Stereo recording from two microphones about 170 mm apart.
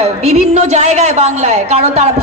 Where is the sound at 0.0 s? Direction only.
40° right (ahead or behind).